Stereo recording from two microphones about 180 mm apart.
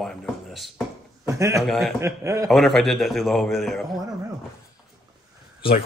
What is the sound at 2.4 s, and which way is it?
Speech, centre (ahead or behind).